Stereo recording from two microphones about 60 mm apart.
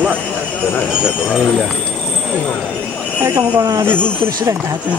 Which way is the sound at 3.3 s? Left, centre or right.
Right.